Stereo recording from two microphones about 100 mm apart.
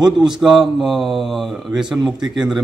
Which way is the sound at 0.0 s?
5° right (ahead or behind).